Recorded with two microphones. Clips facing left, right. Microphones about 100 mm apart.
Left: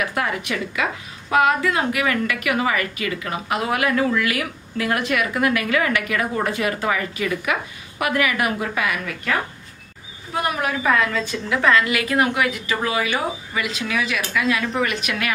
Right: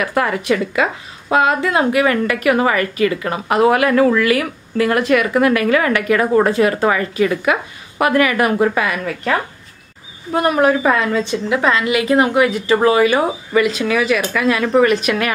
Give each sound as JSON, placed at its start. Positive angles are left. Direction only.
{"t": 0.0, "sound": "a woman's voice", "side_deg": -40}
{"t": 12.7, "sound": "a woman's voice", "side_deg": -40}